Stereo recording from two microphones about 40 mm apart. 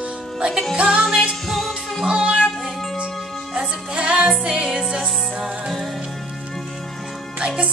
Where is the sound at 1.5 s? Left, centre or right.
Centre.